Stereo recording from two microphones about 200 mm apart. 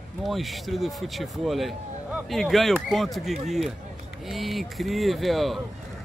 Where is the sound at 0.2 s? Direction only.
Centre (ahead or behind).